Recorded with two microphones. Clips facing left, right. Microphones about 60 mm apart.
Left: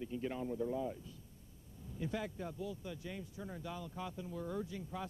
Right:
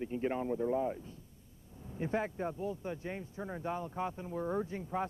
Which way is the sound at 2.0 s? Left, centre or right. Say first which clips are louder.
Right 6 dB; right.